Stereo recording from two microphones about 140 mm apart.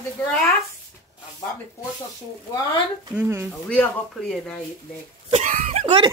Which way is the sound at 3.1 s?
15° right (ahead or behind).